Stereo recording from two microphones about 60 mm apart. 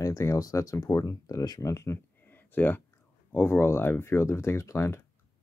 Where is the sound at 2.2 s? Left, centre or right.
Left.